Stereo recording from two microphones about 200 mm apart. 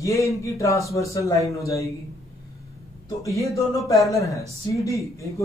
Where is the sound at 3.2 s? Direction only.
15° left (ahead or behind).